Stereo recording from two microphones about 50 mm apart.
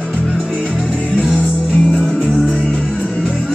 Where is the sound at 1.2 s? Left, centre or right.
Centre.